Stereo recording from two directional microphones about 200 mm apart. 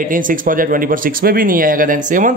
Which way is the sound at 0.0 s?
40° right (ahead or behind).